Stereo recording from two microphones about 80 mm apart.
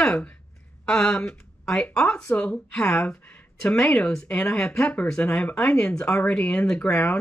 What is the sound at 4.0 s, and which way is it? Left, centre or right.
Speech, centre.